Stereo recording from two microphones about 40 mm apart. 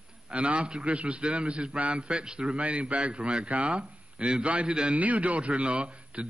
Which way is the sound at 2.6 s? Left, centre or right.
Right.